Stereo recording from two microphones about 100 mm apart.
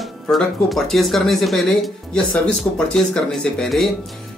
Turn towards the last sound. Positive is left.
turn(degrees=5)  # may be behind; listen again after turning